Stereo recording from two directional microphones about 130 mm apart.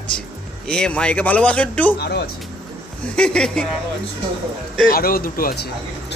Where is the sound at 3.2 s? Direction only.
5° left (ahead or behind).